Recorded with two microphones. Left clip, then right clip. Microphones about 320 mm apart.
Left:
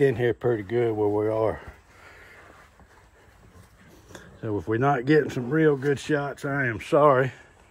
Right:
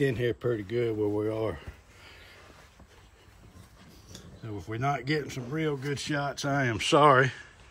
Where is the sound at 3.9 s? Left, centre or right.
Centre.